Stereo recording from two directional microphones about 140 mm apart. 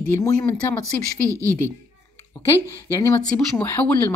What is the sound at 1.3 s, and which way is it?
Speech, 20° right (ahead or behind).